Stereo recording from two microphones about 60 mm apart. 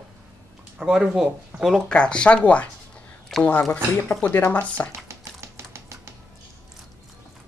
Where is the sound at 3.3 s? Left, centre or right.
Centre.